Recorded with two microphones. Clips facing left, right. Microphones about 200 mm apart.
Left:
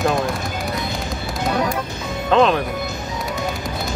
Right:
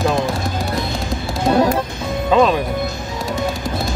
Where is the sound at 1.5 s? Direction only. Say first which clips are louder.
Right 7 dB; 30° right (ahead or behind).